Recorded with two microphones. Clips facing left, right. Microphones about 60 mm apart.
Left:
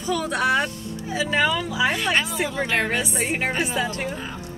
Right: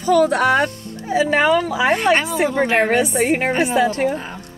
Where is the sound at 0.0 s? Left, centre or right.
Right.